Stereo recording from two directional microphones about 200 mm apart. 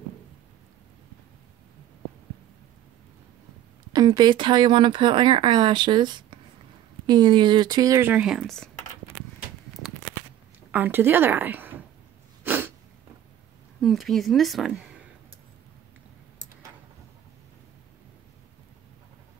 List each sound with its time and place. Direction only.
3.9 s speech: 20° right (ahead or behind); by 8.6 s centre (ahead or behind)
10.7 s a woman's voice: 10° right (ahead or behind)
12.4 s sneeze: 10° right (ahead or behind)
13.7 s speech: centre (ahead or behind)